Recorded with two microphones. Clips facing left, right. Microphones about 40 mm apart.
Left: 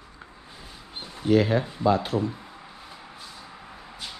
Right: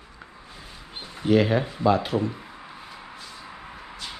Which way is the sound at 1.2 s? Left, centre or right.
Right.